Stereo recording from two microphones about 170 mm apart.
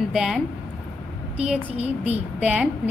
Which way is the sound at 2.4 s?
5° right (ahead or behind).